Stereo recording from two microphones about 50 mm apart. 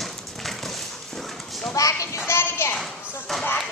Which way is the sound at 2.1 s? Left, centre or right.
Left.